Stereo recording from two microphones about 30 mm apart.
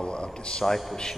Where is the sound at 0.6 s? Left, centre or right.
Centre.